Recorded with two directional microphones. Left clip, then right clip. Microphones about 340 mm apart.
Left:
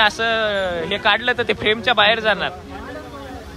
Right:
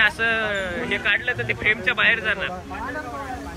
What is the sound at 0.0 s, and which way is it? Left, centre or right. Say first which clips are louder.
Speech: left 3 dB; centre.